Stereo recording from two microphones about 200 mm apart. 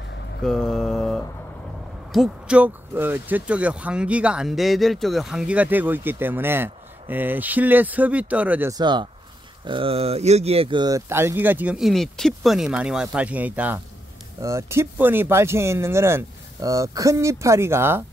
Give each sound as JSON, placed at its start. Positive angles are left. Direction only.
{"t": 0.4, "sound": "mantra", "side_deg": 0}
{"t": 2.1, "sound": "speech", "side_deg": -5}